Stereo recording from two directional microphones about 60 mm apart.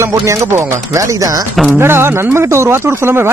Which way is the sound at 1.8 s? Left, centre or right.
Right.